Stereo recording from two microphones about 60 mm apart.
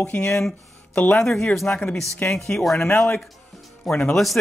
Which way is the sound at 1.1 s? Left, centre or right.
Centre.